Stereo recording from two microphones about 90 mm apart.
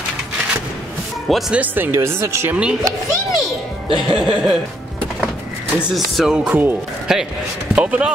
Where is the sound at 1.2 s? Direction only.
Centre (ahead or behind).